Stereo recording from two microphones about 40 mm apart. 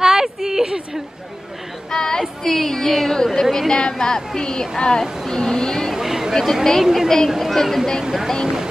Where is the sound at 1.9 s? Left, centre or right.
Centre.